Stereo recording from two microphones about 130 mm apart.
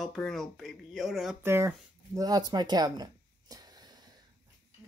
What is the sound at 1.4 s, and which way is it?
Speech, 20° right (ahead or behind).